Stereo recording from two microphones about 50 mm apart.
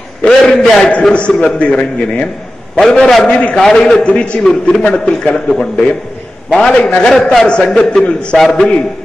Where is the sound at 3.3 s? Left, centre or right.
Left.